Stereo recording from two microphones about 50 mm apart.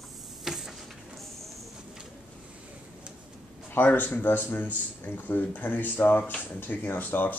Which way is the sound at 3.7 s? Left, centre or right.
Left.